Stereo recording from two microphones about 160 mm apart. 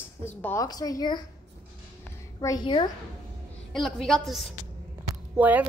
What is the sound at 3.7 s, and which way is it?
Speech, centre (ahead or behind).